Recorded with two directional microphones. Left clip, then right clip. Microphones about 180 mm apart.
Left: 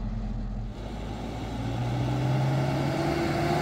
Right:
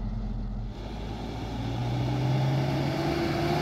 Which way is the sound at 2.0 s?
15° left (ahead or behind).